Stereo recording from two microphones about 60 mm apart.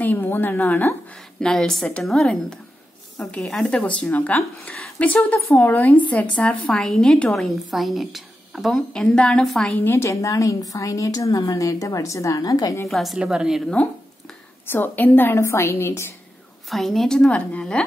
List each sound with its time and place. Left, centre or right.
0.0 s a woman's voice: left
1.4 s a woman's voice: centre
3.6 s a woman's voice: left
7.3 s a woman's voice: centre
9.8 s a woman's voice: left
10.2 s a woman's voice: left
12.8 s a woman's voice: centre
13.2 s a woman's voice: centre
14.7 s a woman's voice: left
15.3 s a woman's voice: left
16.6 s a woman's voice: centre
17.3 s a woman's voice: centre